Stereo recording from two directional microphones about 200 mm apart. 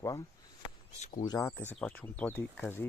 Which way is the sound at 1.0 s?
35° left (ahead or behind).